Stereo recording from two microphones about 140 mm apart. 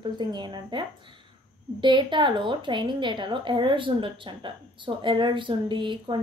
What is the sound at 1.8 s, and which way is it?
A woman's voice, 35° right (ahead or behind).